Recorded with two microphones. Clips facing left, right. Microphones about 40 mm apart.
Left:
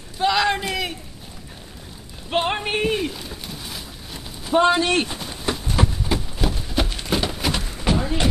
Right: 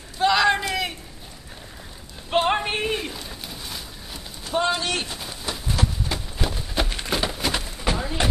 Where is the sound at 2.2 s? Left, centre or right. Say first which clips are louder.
Right 1 dB; centre.